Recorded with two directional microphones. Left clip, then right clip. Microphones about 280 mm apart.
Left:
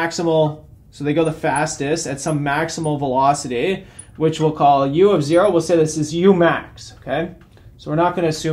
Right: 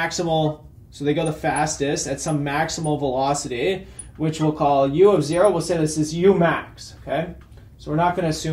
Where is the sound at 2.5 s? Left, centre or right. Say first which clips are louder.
Left 2 dB; left.